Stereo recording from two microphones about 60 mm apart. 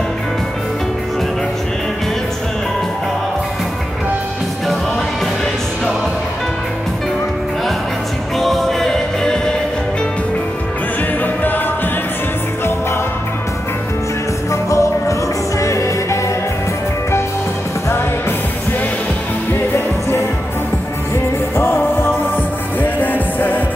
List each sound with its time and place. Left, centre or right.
8.4 s music: centre
14.5 s music: left
21.5 s music: left
22.8 s music: left